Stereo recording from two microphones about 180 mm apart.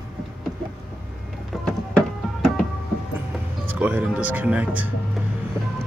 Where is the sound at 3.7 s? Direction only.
10° right (ahead or behind).